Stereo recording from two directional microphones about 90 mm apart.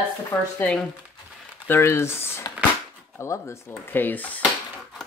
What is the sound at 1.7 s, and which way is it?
Speech, 25° left (ahead or behind).